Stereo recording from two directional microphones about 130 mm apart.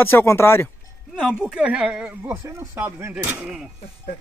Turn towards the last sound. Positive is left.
turn(degrees=-15)  # may be behind; listen again after turning